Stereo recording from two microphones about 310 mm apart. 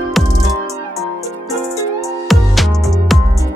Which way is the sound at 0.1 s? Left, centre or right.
Centre.